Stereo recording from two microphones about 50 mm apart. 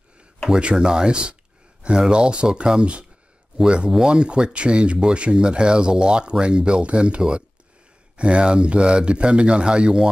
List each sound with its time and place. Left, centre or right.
0.6 s speech: centre